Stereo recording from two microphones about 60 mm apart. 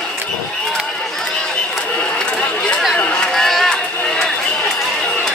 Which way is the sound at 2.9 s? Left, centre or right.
Left.